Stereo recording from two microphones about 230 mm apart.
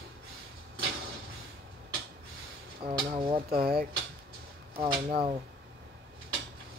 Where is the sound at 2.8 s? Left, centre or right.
Right.